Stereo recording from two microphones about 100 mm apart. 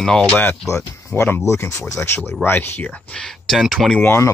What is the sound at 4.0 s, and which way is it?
Speech, 20° left (ahead or behind).